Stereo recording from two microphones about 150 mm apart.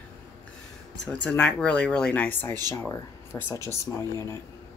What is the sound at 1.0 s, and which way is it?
Speech, 5° left (ahead or behind).